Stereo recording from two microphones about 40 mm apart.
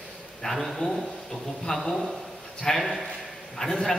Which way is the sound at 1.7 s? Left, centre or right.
Centre.